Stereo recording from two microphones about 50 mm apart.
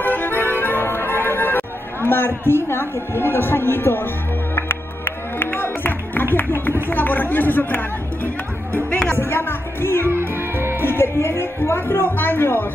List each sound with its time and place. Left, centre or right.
0.0 s music: left
2.0 s a woman's voice: left
4.6 s music: left
6.3 s a woman's voice: left
10.3 s music: right
10.8 s speech: left